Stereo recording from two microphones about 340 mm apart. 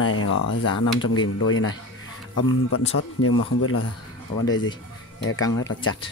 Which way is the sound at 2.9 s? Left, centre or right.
Left.